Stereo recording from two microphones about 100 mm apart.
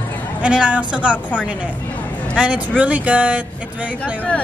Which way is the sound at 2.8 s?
15° right (ahead or behind).